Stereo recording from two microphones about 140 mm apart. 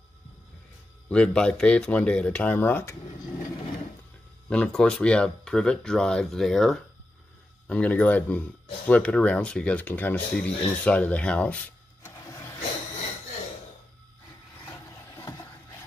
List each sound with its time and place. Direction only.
1.0 s speech: 10° left (ahead or behind)
4.5 s speech: 5° left (ahead or behind)
15.1 s a sound: 25° left (ahead or behind)